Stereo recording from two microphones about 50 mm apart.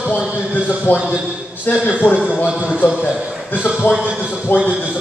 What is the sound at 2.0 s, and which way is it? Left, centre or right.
Speech, left.